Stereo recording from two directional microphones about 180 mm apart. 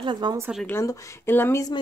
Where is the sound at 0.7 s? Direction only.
15° left (ahead or behind).